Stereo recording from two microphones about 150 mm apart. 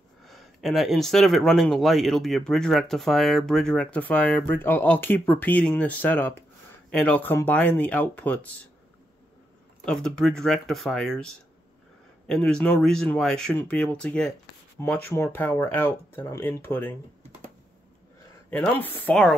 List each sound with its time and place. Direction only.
0.2 s speech: centre (ahead or behind)
9.8 s speech: 5° left (ahead or behind)
12.3 s speech: 5° left (ahead or behind)
18.5 s speech: 10° left (ahead or behind)